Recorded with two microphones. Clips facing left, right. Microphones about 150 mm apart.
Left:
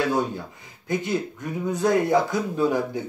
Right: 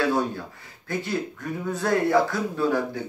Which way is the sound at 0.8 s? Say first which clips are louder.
Left 3 dB; 20° left (ahead or behind).